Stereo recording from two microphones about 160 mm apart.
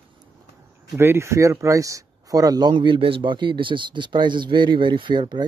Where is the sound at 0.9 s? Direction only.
15° right (ahead or behind).